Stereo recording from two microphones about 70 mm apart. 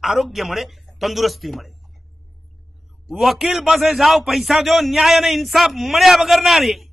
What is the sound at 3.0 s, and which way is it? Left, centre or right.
A man's voice, centre.